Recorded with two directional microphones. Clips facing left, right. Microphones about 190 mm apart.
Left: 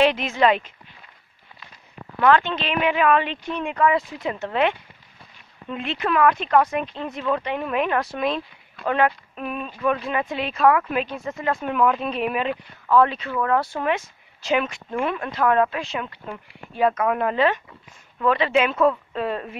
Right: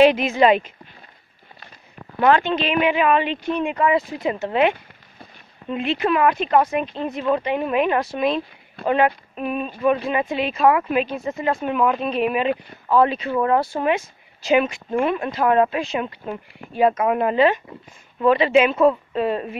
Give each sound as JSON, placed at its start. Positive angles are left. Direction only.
{"t": 0.0, "sound": "speech", "side_deg": -10}
{"t": 2.1, "sound": "speech", "side_deg": -15}
{"t": 13.3, "sound": "speech", "side_deg": -25}
{"t": 13.8, "sound": "speech", "side_deg": -10}